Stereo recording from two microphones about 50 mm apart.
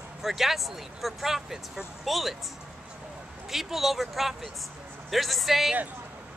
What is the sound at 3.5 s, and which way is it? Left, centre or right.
Speech, centre.